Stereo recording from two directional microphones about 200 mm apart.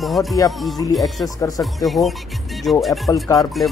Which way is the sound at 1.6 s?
Centre (ahead or behind).